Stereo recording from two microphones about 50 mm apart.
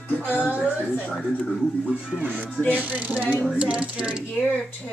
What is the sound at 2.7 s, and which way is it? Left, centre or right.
Speech, right.